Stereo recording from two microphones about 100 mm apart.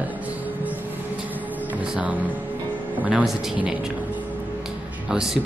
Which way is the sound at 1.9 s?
15° right (ahead or behind).